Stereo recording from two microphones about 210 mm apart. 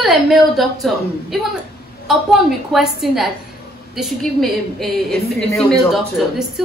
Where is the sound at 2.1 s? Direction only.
Centre (ahead or behind).